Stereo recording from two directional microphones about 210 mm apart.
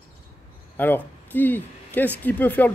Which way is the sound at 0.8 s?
10° left (ahead or behind).